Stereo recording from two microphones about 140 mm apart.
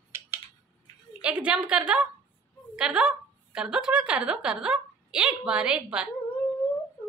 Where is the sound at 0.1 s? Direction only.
15° right (ahead or behind).